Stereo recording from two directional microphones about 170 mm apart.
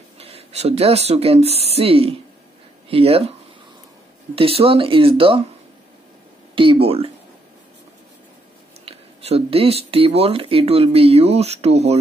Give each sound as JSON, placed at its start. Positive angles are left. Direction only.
{"t": 0.2, "sound": "speech", "side_deg": -35}
{"t": 4.4, "sound": "speech", "side_deg": -35}
{"t": 6.5, "sound": "speech", "side_deg": -30}
{"t": 8.8, "sound": "speech", "side_deg": -35}